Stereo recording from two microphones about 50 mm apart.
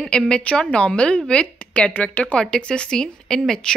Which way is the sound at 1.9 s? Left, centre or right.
Left.